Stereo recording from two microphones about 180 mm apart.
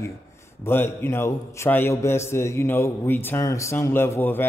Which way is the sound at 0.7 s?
10° left (ahead or behind).